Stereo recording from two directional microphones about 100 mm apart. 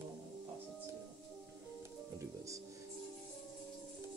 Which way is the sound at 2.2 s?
30° right (ahead or behind).